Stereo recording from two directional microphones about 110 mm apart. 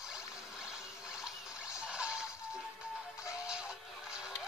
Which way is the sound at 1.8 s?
10° right (ahead or behind).